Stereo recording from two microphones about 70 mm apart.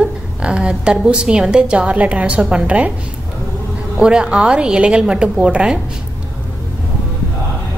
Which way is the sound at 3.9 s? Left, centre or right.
Centre.